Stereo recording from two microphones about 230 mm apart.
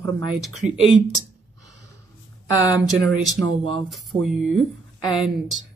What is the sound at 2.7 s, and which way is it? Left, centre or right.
Speech, centre.